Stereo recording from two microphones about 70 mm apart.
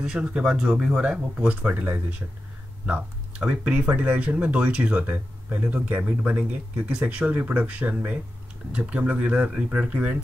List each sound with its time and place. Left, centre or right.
0.0 s speech: centre